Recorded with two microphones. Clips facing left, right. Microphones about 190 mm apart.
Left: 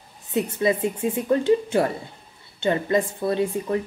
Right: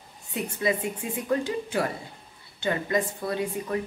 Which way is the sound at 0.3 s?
25° left (ahead or behind).